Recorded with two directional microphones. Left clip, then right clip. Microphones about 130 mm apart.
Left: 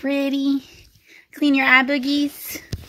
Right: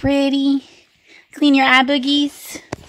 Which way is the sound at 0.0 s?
30° right (ahead or behind).